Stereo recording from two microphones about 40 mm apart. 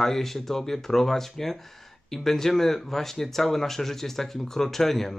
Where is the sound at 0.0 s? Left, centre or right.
Centre.